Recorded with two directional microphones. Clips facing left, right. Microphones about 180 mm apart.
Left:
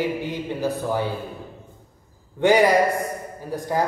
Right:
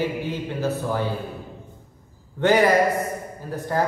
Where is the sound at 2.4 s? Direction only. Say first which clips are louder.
Left 1 dB; 15° left (ahead or behind).